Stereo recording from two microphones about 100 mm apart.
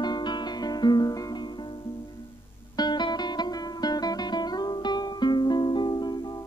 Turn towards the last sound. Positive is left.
turn(degrees=40)  # may be behind; listen again after turning